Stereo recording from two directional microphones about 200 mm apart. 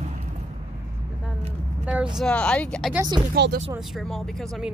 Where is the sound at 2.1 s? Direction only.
5° left (ahead or behind).